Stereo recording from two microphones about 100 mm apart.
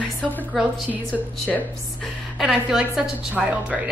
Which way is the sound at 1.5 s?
5° left (ahead or behind).